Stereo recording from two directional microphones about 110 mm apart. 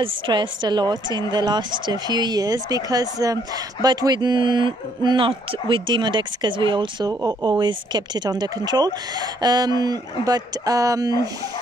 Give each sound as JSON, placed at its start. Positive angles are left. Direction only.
{"t": 0.0, "sound": "speech", "side_deg": -45}
{"t": 7.1, "sound": "speech", "side_deg": -35}
{"t": 7.4, "sound": "speech", "side_deg": -45}